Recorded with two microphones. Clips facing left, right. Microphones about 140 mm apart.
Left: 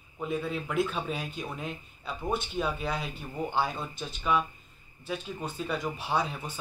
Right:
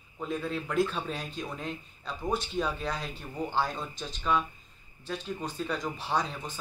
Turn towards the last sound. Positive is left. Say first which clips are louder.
# left 1 dB
turn(degrees=5)  # may be behind; listen again after turning